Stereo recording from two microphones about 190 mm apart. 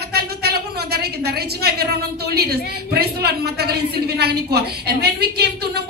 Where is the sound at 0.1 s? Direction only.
55° right (ahead or behind).